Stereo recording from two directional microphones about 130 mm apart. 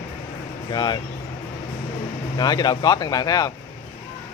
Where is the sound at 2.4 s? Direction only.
30° left (ahead or behind).